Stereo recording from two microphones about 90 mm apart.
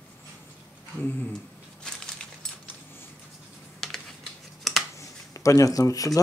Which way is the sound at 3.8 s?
5° left (ahead or behind).